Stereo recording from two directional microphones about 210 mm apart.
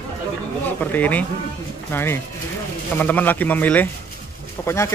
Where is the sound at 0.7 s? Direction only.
5° left (ahead or behind).